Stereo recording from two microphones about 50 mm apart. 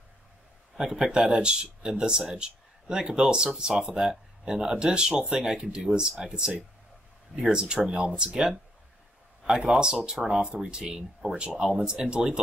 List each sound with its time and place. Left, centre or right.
0.7 s speech: centre
9.7 s speech: centre